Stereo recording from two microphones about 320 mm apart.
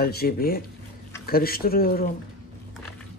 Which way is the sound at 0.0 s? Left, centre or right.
Left.